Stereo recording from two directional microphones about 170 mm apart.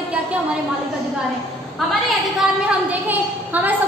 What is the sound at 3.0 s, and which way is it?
Speech, 10° right (ahead or behind).